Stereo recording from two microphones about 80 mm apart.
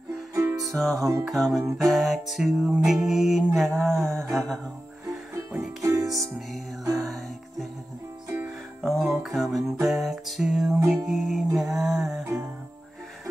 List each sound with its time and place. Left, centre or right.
0.3 s music: right
0.7 s music: centre
1.6 s music: right
1.9 s music: centre
5.8 s music: right
7.0 s music: centre
8.8 s music: centre